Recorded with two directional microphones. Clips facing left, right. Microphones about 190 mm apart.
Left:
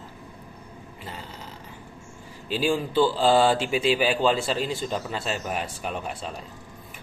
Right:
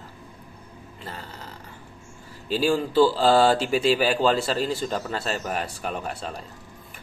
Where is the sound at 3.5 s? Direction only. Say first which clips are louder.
Right 2 dB; 40° right (ahead or behind).